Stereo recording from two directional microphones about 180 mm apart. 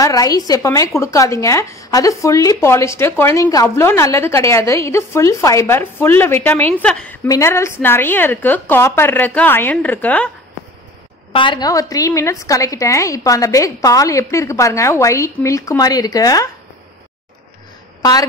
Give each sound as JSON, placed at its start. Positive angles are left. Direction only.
{"t": 0.0, "sound": "a woman's voice", "side_deg": 20}
{"t": 7.2, "sound": "a woman's voice", "side_deg": 15}
{"t": 11.3, "sound": "a woman's voice", "side_deg": 25}